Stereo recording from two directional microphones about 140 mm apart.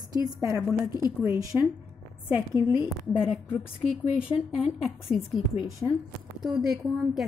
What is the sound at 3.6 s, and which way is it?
A woman's voice, 5° right (ahead or behind).